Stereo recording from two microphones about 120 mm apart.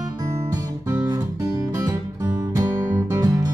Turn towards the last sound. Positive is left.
turn(degrees=-30)  # may be behind; listen again after turning